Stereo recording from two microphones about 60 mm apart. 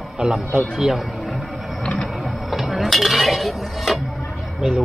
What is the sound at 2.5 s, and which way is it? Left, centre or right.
Dishes, centre.